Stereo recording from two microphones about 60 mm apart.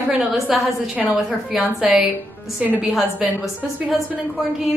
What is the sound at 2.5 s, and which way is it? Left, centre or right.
Speech, right.